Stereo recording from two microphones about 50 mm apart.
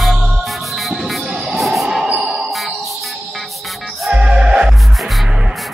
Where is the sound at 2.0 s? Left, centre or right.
Centre.